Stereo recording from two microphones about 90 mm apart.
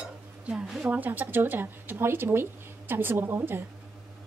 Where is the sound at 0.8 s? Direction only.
20° right (ahead or behind).